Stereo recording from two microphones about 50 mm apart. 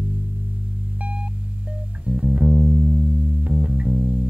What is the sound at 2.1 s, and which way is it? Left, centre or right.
Music, right.